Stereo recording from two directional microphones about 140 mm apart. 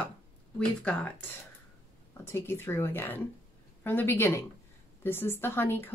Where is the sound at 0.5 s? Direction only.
10° left (ahead or behind).